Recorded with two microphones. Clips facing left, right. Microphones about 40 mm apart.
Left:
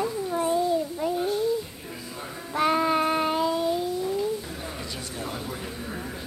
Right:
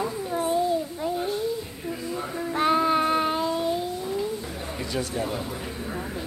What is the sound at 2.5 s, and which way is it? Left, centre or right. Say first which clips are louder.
Child singing: right 1 dB; right.